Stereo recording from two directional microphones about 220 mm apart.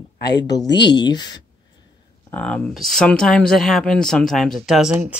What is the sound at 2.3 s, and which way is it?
Speech, 5° left (ahead or behind).